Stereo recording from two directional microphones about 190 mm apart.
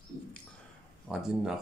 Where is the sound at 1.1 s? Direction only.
Centre (ahead or behind).